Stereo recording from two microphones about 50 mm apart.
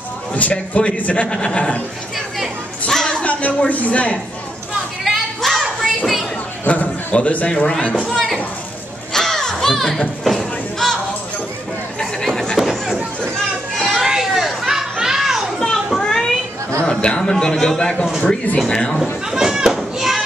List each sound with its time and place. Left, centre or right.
0.4 s a man's voice: left
2.9 s music: centre
3.3 s a woman's voice: left
5.0 s a sound: centre
6.7 s a man's voice: left
9.1 s a sound: centre
12.5 s run: centre
13.9 s children playing: centre
15.6 s children playing: centre
16.0 s a sound: centre
16.8 s a man's voice: centre
19.3 s children playing: centre